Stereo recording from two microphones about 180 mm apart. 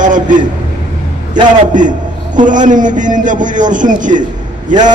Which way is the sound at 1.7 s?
45° right (ahead or behind).